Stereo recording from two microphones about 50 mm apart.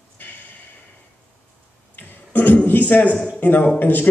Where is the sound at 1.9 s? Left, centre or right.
Left.